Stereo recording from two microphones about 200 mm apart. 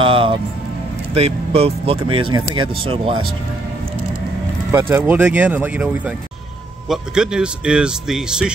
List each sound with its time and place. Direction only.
0.0 s music: 25° right (ahead or behind)
1.1 s speech: 30° right (ahead or behind)
4.7 s speech: 10° right (ahead or behind)